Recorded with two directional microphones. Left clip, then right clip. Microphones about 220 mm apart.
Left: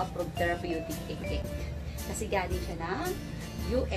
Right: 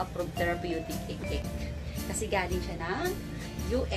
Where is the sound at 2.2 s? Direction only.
20° right (ahead or behind).